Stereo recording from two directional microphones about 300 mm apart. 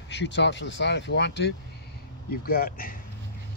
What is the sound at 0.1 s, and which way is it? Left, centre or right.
Speech, left.